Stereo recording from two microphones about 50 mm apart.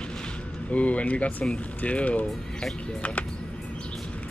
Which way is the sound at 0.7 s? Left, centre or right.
Left.